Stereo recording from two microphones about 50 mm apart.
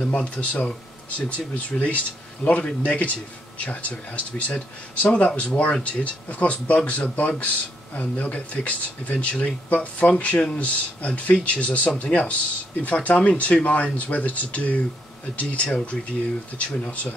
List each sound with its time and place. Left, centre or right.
0.0 s speech: left